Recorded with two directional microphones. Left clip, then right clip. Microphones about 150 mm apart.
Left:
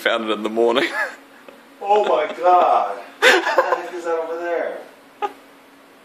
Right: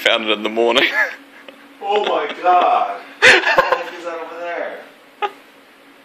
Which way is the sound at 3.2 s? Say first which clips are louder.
Right 4 dB; 20° left (ahead or behind).